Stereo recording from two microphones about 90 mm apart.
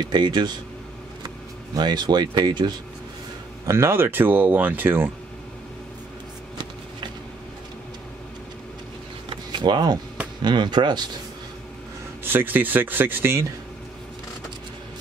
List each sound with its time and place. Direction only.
0.0 s speech: 55° right (ahead or behind)
1.8 s speech: 50° right (ahead or behind)
3.6 s speech: 30° right (ahead or behind)
9.3 s a sound: 60° right (ahead or behind)
10.4 s speech: 55° right (ahead or behind)
12.3 s speech: 20° right (ahead or behind)